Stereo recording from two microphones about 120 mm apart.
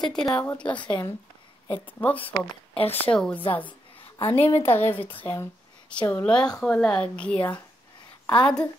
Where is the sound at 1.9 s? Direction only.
15° left (ahead or behind).